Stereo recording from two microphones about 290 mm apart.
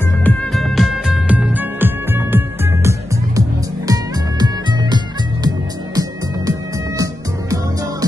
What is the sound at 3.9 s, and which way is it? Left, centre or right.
Music, centre.